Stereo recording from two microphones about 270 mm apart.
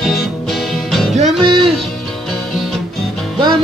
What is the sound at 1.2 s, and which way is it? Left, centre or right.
Music, centre.